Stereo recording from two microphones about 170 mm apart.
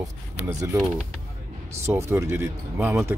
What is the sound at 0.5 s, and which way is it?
Speech, 20° right (ahead or behind).